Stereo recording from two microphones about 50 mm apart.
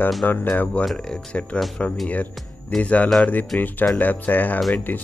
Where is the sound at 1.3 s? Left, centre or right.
Left.